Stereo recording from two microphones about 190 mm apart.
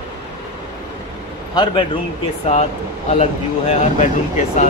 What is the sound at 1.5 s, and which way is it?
Speech, 25° left (ahead or behind).